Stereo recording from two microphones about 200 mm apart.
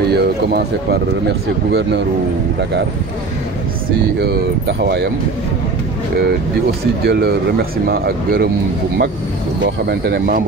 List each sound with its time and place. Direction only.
0.1 s speech: 55° right (ahead or behind)
4.2 s speech: 55° right (ahead or behind)
7.1 s speech: 55° right (ahead or behind)
9.8 s speech: 55° right (ahead or behind)